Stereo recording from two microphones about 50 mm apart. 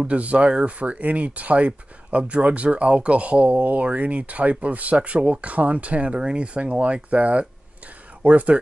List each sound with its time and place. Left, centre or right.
0.0 s speech: right